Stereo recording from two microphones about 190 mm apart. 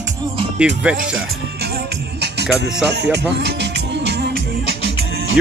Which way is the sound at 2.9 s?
65° right (ahead or behind).